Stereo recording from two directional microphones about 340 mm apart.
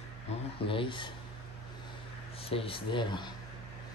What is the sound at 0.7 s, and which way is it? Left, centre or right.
Speech, centre.